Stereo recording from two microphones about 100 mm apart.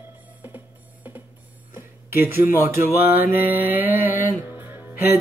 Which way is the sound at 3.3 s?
20° right (ahead or behind).